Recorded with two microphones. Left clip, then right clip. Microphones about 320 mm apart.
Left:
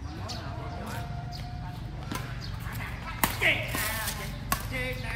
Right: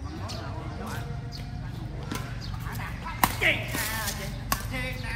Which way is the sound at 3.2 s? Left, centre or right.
Centre.